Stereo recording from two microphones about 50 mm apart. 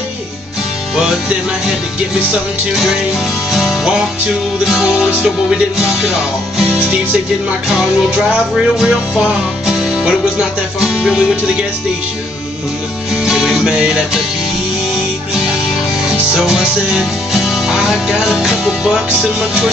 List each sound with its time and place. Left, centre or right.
2.7 s music: centre
4.8 s music: centre
6.7 s speech: right
8.7 s music: centre
13.2 s music: centre
16.1 s music: centre